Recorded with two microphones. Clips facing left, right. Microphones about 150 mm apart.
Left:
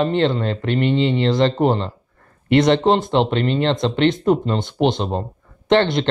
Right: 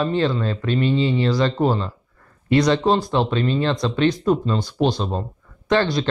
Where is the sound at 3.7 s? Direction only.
25° left (ahead or behind).